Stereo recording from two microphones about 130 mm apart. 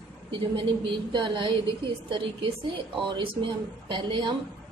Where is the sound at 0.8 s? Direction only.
35° right (ahead or behind).